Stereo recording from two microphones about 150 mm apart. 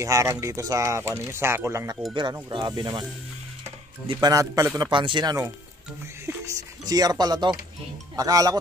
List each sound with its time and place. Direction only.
0.0 s speech: 20° right (ahead or behind)
4.1 s speech: 25° right (ahead or behind)
4.9 s speech: 30° right (ahead or behind)
6.9 s speech: 25° right (ahead or behind)